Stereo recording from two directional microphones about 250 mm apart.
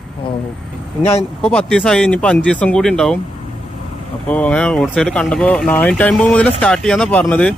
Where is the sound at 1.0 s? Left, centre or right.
Left.